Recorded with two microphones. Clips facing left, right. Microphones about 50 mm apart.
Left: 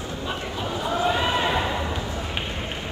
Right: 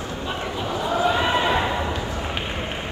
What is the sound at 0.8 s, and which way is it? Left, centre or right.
Basketball bounce, centre.